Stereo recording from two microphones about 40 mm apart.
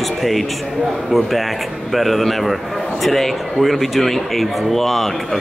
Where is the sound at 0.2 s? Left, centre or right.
Centre.